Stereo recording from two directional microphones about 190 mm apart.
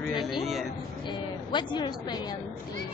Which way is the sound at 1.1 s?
25° left (ahead or behind).